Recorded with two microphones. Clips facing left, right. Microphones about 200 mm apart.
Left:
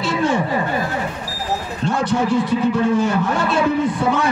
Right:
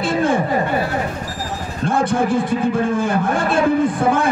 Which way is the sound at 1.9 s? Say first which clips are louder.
Right 1 dB; 50° right (ahead or behind).